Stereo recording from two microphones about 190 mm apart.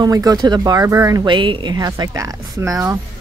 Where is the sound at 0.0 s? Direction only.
20° right (ahead or behind).